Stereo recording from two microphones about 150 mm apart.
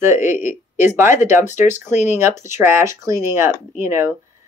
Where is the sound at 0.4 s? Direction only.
55° left (ahead or behind).